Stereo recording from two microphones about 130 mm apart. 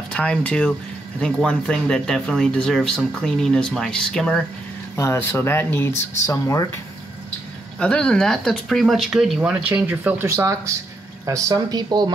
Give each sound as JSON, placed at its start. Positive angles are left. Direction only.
{"t": 0.1, "sound": "speech", "side_deg": 10}
{"t": 4.9, "sound": "speech", "side_deg": 20}
{"t": 7.8, "sound": "speech", "side_deg": 5}